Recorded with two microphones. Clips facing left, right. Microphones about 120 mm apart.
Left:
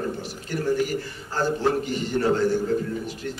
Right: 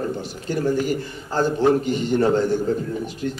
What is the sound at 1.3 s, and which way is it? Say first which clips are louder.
A man's voice: right 5 dB; 20° right (ahead or behind).